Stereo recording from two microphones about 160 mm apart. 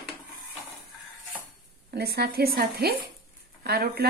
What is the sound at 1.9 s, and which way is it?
Speech, 85° right.